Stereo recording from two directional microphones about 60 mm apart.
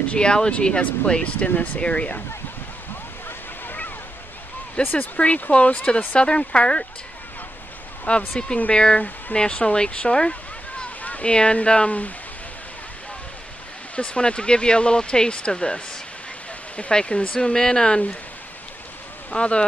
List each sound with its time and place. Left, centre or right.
0.1 s speech: centre
4.8 s speech: left
8.1 s speech: left
11.0 s speech: left
13.9 s speech: centre
19.3 s speech: centre